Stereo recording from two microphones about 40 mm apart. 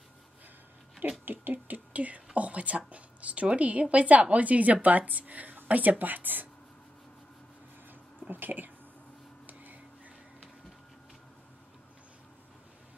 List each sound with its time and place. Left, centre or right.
1.2 s speech: right
8.3 s speech: right
9.5 s a sound: right